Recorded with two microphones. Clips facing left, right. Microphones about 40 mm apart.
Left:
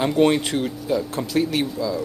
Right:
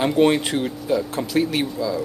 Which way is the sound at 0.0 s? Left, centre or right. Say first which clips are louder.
Right 1 dB; centre.